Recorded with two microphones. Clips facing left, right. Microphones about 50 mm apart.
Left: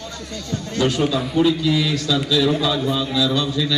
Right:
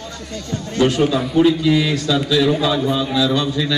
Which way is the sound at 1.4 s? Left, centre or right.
Right.